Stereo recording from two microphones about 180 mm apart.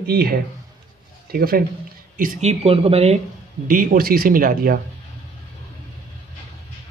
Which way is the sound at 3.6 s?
50° right (ahead or behind).